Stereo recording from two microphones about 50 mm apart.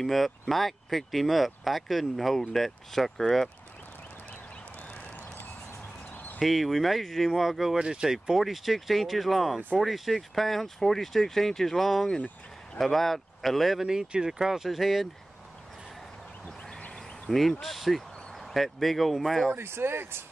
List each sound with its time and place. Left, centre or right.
0.0 s speech: centre
4.8 s a sound: left
6.4 s speech: centre
8.4 s speech: centre
13.8 s speech: centre
16.4 s vehicle: centre
16.9 s speech: centre
19.5 s speech: right